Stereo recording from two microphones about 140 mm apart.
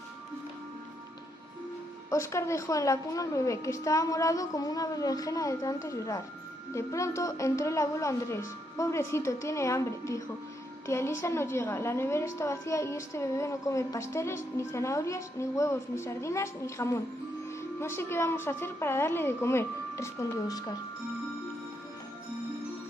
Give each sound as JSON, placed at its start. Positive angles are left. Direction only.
{"t": 2.0, "sound": "a woman's voice", "side_deg": 20}